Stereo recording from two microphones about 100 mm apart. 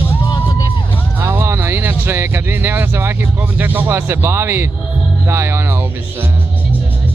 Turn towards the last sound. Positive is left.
turn(degrees=-25)  # may be behind; listen again after turning